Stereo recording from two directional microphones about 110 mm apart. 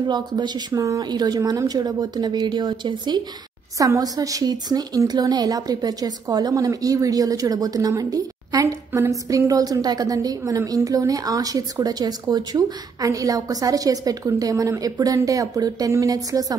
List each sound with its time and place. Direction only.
0.1 s a woman's voice: 40° right (ahead or behind)
3.7 s a woman's voice: 30° right (ahead or behind)